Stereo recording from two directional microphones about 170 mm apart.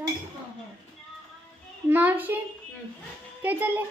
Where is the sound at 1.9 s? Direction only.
10° right (ahead or behind).